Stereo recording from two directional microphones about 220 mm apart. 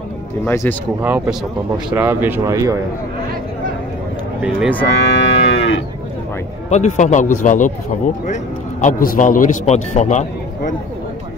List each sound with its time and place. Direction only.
0.5 s speech: 10° left (ahead or behind)
1.0 s speech: 10° right (ahead or behind)
4.8 s moo: 55° left (ahead or behind)
6.7 s a man's voice: 30° left (ahead or behind)